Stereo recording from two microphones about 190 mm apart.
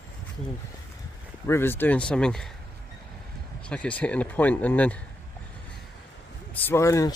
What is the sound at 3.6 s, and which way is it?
Speech, 5° left (ahead or behind).